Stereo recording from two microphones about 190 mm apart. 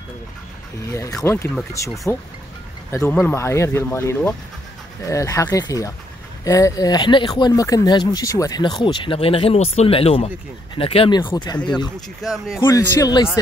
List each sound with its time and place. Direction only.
0.9 s speech: 15° left (ahead or behind)
12.2 s speech: centre (ahead or behind)
12.5 s speech: 15° left (ahead or behind)